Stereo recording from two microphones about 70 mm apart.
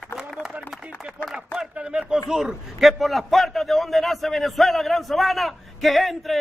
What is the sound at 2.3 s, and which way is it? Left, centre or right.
A man's voice, centre.